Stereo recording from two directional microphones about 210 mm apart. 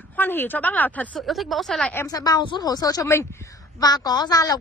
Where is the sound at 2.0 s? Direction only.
20° left (ahead or behind).